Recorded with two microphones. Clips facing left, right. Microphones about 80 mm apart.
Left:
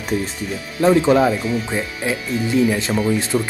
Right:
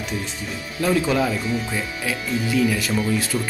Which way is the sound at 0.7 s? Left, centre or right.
Left.